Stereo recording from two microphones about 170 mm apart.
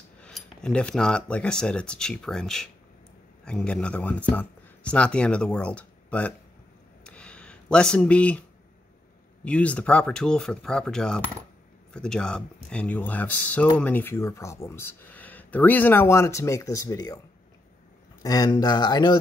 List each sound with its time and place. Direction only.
0.2 s speech: 5° left (ahead or behind)
7.1 s a sound: 5° left (ahead or behind)
9.4 s speech: 5° left (ahead or behind)
18.2 s speech: 20° left (ahead or behind)